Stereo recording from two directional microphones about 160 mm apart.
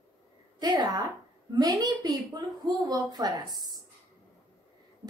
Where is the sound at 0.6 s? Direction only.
25° right (ahead or behind).